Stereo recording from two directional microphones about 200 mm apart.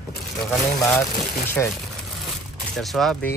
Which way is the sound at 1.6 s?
10° left (ahead or behind).